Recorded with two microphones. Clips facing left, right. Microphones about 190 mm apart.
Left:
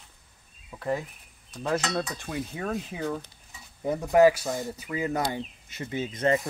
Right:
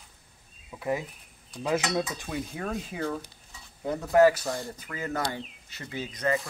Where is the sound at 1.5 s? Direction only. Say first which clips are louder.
Right 1 dB; 10° right (ahead or behind).